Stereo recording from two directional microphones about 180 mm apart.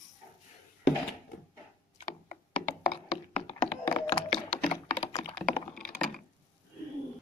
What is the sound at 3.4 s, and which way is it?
Thunk, 25° left (ahead or behind).